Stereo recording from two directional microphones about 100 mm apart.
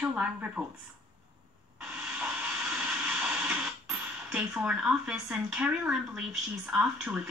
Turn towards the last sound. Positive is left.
turn(degrees=-15)  # may be behind; listen again after turning